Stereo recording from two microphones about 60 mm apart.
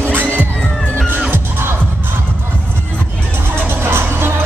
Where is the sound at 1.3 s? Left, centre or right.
Right.